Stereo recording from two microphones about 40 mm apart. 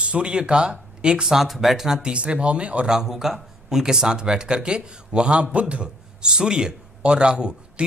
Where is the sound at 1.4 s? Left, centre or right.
Centre.